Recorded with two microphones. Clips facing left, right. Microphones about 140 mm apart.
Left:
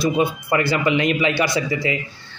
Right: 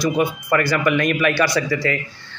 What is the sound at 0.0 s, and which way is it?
A man's voice, 25° left (ahead or behind).